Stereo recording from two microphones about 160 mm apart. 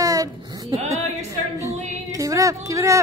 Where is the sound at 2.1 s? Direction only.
20° right (ahead or behind).